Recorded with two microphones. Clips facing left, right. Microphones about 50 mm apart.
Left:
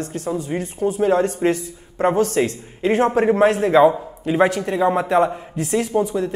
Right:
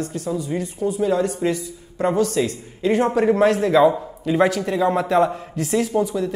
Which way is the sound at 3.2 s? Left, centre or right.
Left.